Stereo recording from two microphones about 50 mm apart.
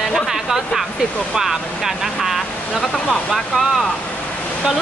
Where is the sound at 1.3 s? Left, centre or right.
Centre.